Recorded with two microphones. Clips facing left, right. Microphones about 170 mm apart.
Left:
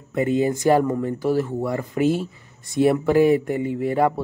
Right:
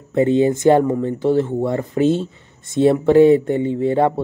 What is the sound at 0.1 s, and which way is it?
Speech, 25° right (ahead or behind).